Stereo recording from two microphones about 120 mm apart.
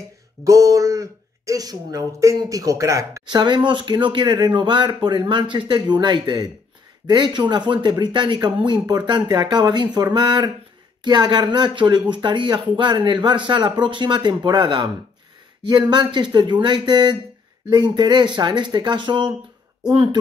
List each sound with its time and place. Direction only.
0.4 s speech: 25° right (ahead or behind)
3.3 s speech: 40° right (ahead or behind)